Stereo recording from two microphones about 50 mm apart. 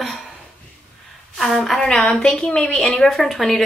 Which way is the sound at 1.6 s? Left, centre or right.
Centre.